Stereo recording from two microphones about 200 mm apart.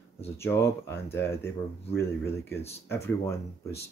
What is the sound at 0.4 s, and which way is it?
Speech, 10° left (ahead or behind).